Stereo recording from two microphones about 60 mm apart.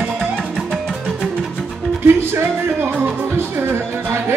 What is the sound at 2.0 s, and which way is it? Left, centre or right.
Music, right.